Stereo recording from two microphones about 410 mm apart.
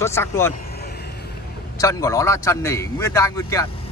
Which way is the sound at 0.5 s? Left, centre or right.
Left.